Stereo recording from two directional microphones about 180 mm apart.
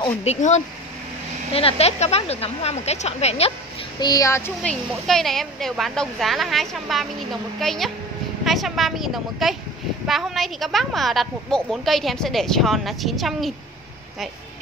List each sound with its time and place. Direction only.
0.0 s speech: 35° left (ahead or behind)
4.0 s speech: 20° left (ahead or behind)
5.0 s a woman's voice: centre (ahead or behind)